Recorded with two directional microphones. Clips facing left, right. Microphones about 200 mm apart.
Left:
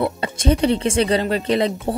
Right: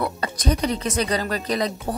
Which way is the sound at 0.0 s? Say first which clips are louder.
Left 4 dB; 25° left (ahead or behind).